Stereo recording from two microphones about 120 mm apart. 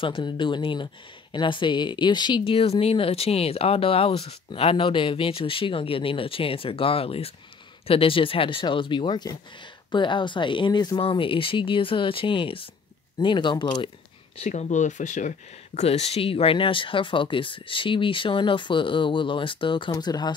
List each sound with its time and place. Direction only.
0.0 s speech: 45° left (ahead or behind)
14.4 s speech: 70° left (ahead or behind); by 20.3 s 35° left (ahead or behind)